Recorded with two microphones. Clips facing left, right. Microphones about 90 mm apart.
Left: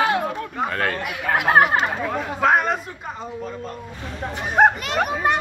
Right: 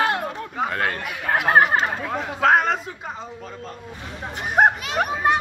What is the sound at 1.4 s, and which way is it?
Speech, 10° left (ahead or behind).